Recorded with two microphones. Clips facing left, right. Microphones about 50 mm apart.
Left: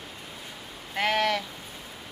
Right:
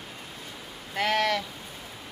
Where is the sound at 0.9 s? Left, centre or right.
Centre.